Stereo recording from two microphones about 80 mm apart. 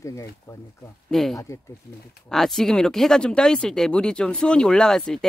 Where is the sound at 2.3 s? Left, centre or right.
Centre.